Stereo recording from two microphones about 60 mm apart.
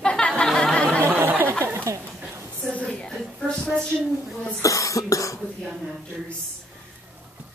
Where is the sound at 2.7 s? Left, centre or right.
Left.